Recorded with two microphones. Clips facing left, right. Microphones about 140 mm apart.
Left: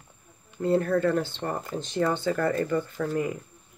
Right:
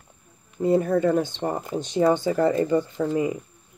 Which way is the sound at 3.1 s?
5° right (ahead or behind).